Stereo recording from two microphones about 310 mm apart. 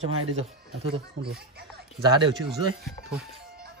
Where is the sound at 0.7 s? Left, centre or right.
Centre.